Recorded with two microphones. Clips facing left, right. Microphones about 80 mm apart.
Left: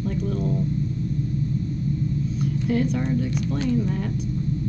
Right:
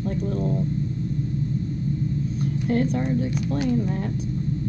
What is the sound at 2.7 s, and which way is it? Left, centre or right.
Speech, right.